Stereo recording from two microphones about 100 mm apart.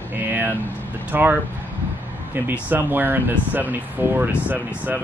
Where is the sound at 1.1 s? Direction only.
20° right (ahead or behind).